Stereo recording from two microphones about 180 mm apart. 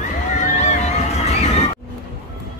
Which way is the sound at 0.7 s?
40° left (ahead or behind).